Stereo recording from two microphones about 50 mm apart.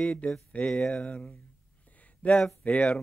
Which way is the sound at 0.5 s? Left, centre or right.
Left.